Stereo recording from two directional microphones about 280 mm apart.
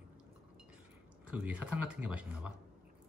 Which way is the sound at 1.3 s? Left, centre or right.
Centre.